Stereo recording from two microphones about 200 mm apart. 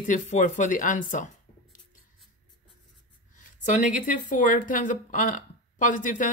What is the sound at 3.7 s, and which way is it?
Speech, 40° left (ahead or behind).